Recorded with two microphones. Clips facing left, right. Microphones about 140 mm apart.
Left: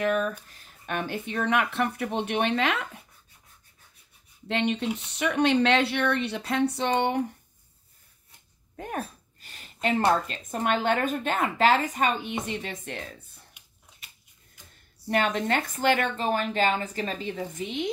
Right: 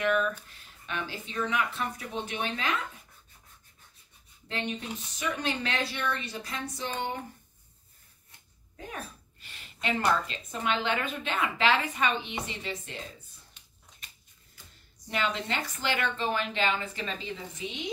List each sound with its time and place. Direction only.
0.0 s speech: 40° left (ahead or behind); by 2.9 s 70° left (ahead or behind)
4.5 s speech: 70° left (ahead or behind)
8.7 s a woman's voice: 50° left (ahead or behind)
13.5 s a sound: 10° left (ahead or behind)
15.0 s a woman's voice: 50° left (ahead or behind)